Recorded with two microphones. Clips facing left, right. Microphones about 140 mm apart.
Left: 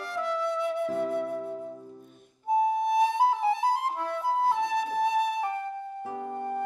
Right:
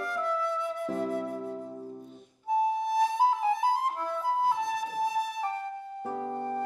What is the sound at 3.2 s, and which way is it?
Flute, 65° left (ahead or behind).